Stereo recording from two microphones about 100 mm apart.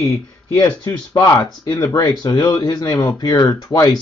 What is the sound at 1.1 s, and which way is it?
Speech, 40° left (ahead or behind).